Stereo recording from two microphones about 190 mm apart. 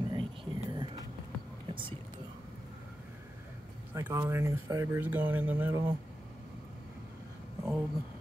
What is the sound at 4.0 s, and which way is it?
Speech, 15° right (ahead or behind).